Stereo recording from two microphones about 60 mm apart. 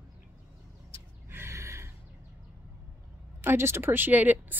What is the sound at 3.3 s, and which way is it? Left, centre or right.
A woman's voice, right.